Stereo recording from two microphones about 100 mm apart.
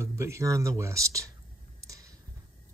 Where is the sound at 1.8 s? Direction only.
35° right (ahead or behind).